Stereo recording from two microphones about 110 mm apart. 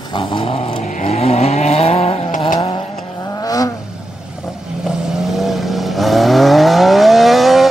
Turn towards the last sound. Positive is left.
turn(degrees=0)  # may be behind; listen again after turning